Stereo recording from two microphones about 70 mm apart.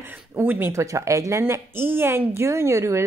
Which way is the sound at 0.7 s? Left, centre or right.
Right.